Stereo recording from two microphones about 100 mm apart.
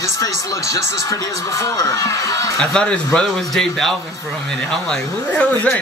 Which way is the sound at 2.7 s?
10° left (ahead or behind).